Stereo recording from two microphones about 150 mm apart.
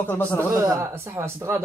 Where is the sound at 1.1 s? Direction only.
20° right (ahead or behind).